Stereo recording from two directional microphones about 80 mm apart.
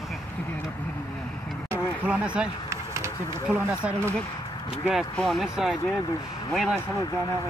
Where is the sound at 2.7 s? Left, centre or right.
Right.